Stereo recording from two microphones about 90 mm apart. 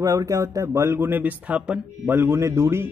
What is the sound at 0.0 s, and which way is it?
A man's voice, 40° right (ahead or behind).